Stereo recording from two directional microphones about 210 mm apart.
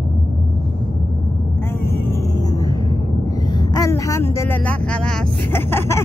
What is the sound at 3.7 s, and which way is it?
Speech, 15° left (ahead or behind).